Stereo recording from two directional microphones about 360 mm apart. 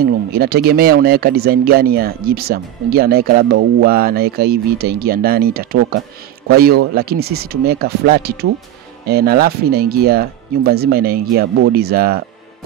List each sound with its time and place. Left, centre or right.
0.0 s speech: right